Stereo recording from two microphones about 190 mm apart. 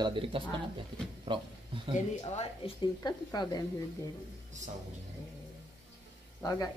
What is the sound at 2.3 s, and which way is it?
Speech, 25° left (ahead or behind).